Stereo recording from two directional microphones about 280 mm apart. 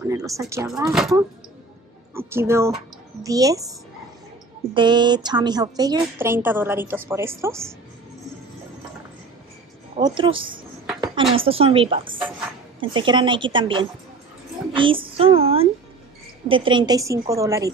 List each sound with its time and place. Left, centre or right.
0.0 s a woman's voice: centre
4.7 s a woman's voice: centre
9.9 s a woman's voice: centre